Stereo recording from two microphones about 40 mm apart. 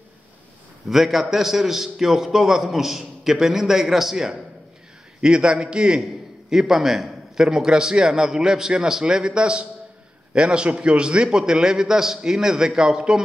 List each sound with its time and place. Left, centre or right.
0.8 s a man's voice: centre
7.4 s a man's voice: centre